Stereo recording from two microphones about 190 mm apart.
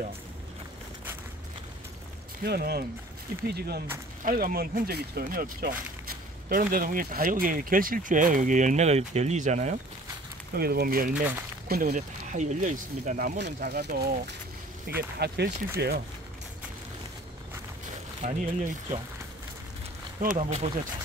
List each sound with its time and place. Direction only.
2.4 s speech: 55° right (ahead or behind); by 9.8 s 40° right (ahead or behind)
10.5 s speech: 55° right (ahead or behind)
13.4 s speech: 60° right (ahead or behind)
18.2 s speech: 40° right (ahead or behind)
20.2 s speech: 40° right (ahead or behind)